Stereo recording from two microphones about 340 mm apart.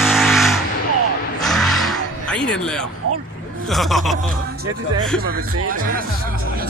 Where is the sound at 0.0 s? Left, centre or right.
Centre.